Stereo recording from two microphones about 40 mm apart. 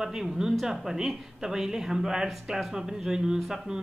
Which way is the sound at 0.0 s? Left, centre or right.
Centre.